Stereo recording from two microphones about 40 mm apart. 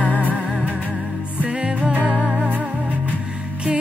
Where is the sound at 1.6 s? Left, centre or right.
Right.